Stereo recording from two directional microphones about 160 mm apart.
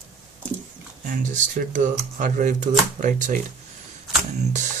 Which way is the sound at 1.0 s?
55° right (ahead or behind).